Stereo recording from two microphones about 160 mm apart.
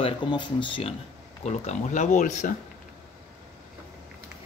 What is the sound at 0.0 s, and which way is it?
Speech, 30° left (ahead or behind).